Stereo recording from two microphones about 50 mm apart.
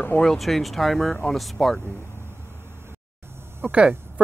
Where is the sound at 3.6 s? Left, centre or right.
Right.